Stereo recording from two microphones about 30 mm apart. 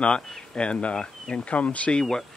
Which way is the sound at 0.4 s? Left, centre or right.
Left.